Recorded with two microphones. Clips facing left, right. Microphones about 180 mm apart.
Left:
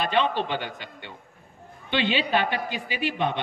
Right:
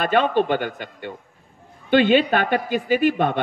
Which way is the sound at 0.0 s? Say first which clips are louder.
Right 5 dB; 50° right (ahead or behind).